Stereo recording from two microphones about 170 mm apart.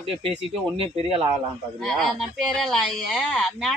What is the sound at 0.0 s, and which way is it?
Speech, 30° right (ahead or behind).